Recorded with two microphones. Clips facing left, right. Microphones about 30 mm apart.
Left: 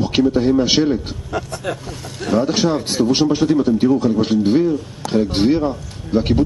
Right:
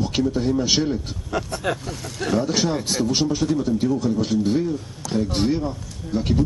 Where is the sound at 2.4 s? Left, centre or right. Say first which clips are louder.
Left 5 dB; left.